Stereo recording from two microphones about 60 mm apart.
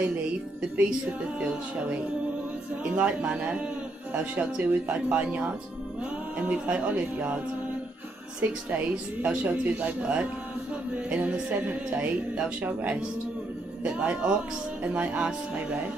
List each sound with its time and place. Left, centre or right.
1.4 s speech: right
8.4 s speech: right